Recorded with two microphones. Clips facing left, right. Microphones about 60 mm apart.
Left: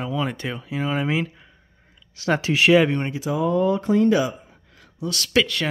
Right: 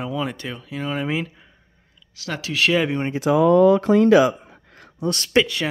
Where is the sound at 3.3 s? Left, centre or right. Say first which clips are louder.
Right 7 dB; right.